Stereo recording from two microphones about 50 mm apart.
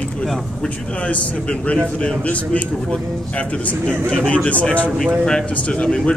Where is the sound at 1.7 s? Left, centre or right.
Left.